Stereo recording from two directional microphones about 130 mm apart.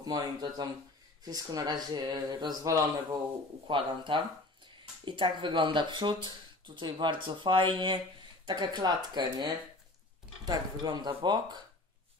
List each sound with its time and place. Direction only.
0.0 s speech: 30° right (ahead or behind)
3.6 s speech: 40° right (ahead or behind)